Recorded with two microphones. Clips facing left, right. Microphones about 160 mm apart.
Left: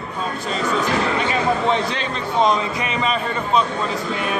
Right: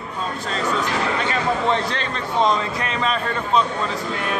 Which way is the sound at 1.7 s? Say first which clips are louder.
Left 1 dB; 10° left (ahead or behind).